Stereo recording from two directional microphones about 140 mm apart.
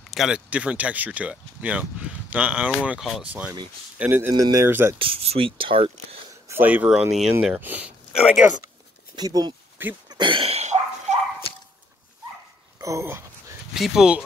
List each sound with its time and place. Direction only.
0.1 s speech: 5° right (ahead or behind)
4.9 s speech: 40° right (ahead or behind)
6.5 s speech: 10° right (ahead or behind)
9.1 s speech: 30° right (ahead or behind)
10.0 s cough: 35° right (ahead or behind); by 11.1 s 55° right (ahead or behind)
12.8 s speech: 20° right (ahead or behind)
13.7 s speech: 5° right (ahead or behind)